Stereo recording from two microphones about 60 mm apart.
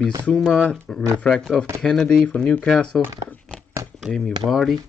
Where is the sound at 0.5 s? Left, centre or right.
Centre.